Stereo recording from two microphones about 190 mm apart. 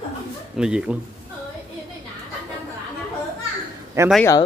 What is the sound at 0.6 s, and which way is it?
Speech, 5° right (ahead or behind).